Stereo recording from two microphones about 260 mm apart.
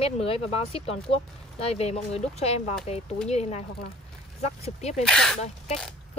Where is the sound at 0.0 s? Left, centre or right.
Left.